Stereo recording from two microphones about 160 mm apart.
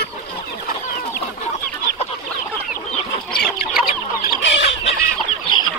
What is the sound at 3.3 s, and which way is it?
Chicken, 75° left (ahead or behind).